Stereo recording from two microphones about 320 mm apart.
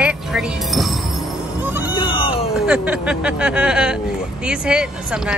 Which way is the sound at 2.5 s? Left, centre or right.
Centre.